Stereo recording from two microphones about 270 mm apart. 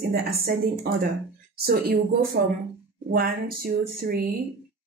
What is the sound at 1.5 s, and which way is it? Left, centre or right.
A woman's voice, right.